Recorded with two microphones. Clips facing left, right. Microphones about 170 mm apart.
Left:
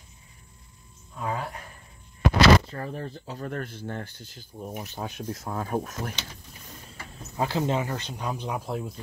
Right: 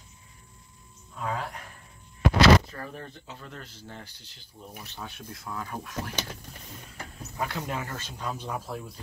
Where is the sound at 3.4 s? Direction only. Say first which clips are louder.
Left 15 dB; 55° left (ahead or behind).